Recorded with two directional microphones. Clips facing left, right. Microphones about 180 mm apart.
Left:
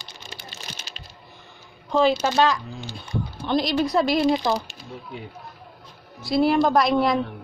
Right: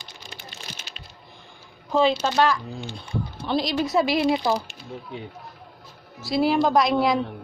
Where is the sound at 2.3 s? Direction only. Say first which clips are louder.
Left 1 dB; 20° left (ahead or behind).